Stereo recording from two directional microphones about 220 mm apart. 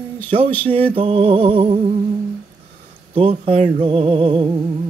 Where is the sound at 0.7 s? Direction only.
25° right (ahead or behind).